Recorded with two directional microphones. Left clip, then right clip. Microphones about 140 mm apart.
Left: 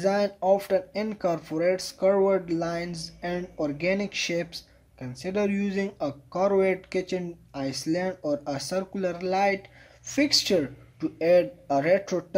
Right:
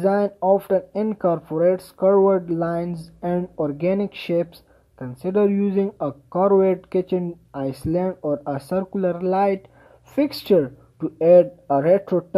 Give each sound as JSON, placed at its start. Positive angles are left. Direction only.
{"t": 0.0, "sound": "speech", "side_deg": -35}